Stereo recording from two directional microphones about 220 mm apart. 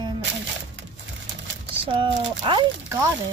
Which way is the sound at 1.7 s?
25° right (ahead or behind).